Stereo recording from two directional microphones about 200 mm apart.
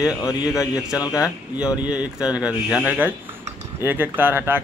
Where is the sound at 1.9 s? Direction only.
5° right (ahead or behind).